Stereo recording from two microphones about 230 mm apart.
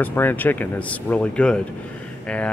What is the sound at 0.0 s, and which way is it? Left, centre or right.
Speech, centre.